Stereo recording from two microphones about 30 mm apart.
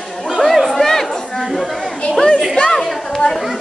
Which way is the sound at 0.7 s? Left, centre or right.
Centre.